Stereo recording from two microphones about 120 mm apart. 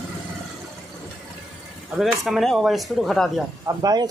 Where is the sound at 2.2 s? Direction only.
Centre (ahead or behind).